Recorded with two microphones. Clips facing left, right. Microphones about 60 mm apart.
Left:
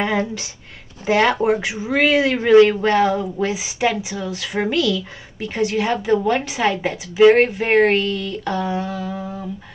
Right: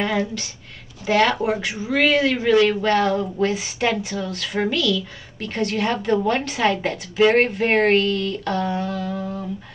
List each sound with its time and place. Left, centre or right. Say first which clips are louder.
1.0 s a woman's voice: left 2 dB; centre